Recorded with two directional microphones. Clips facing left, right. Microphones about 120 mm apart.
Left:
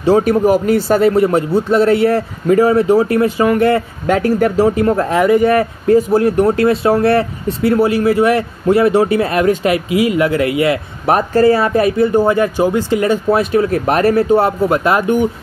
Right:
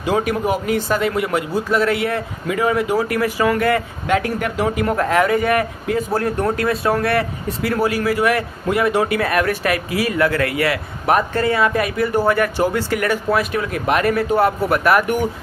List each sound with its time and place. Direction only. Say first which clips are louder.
0.0 s speech: left 8 dB; 35° left (ahead or behind)
11.1 s speech: left 6 dB; 35° left (ahead or behind)